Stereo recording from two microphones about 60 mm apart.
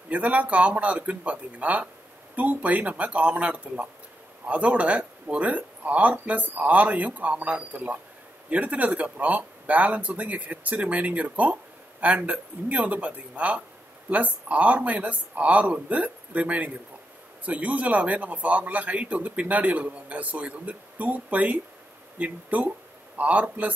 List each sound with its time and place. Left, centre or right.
0.1 s a man's voice: right